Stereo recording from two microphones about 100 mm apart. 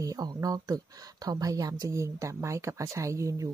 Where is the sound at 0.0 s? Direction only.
40° right (ahead or behind).